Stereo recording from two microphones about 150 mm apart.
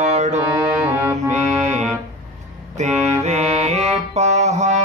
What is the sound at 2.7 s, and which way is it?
Music, 50° right (ahead or behind).